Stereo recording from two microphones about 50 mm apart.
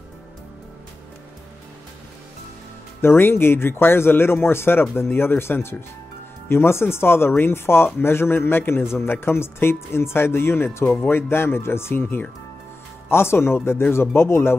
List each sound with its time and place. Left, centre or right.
3.0 s speech: left